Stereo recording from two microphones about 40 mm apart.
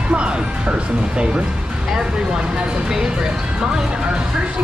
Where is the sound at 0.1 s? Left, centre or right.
Right.